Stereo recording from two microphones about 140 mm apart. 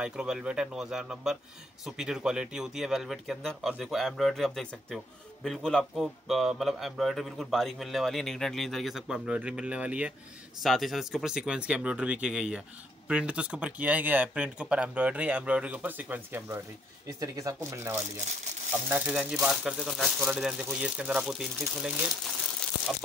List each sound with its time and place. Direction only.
0.0 s speech: 5° right (ahead or behind)